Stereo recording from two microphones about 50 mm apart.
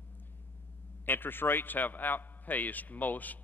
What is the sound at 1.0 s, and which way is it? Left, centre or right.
A man's voice, left.